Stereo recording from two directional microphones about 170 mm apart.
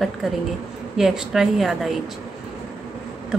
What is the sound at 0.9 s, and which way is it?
Speech, 5° right (ahead or behind).